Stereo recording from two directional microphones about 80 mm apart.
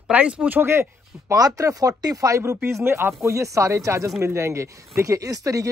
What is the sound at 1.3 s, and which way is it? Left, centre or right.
Speech, right.